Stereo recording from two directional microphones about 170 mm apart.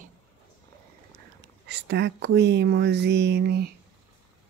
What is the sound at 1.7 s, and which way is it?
A woman's voice, 75° right (ahead or behind).